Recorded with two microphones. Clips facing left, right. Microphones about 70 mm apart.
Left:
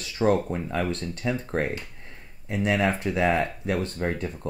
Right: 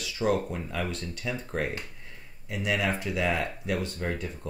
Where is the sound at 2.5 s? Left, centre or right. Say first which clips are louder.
Left 5 dB; left.